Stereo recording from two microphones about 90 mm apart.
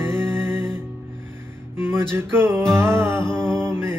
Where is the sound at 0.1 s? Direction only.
25° right (ahead or behind).